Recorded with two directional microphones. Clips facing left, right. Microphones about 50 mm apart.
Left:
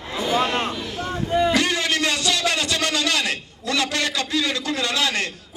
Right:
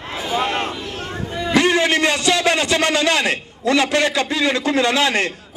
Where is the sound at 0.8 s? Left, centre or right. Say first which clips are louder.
Even; right.